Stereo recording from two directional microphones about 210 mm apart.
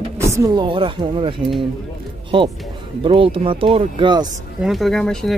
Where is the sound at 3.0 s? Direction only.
25° right (ahead or behind).